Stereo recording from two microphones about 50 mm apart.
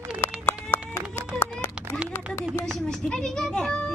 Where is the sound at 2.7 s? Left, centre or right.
Centre.